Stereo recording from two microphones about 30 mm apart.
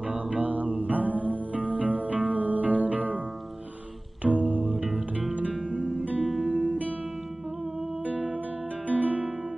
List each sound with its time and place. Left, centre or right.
0.3 s music: right
4.2 s music: right
5.7 s music: right
6.2 s music: centre
6.5 s guitar: right
8.0 s music: right
8.8 s guitar: right